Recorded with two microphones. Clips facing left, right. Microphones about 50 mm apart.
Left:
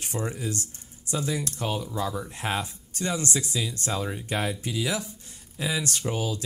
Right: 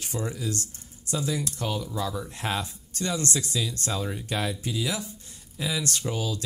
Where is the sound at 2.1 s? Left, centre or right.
Centre.